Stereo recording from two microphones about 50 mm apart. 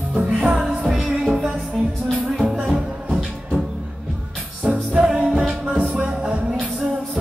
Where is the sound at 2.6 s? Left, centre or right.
Centre.